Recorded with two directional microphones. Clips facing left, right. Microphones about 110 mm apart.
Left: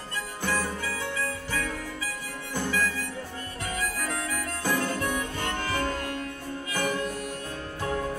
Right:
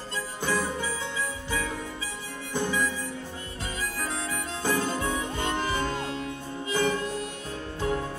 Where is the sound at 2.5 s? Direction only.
20° right (ahead or behind).